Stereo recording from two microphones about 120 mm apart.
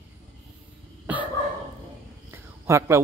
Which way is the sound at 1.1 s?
10° right (ahead or behind).